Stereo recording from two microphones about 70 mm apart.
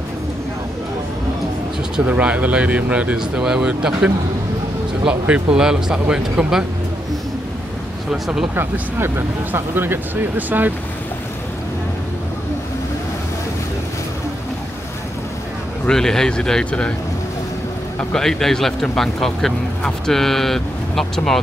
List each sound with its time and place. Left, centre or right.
2.0 s speech: right
5.3 s speech: centre
8.1 s speech: centre
8.5 s speech: right
15.9 s a man's voice: centre
18.1 s speech: centre